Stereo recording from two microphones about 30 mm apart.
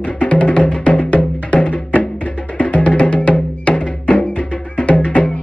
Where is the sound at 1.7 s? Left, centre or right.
Left.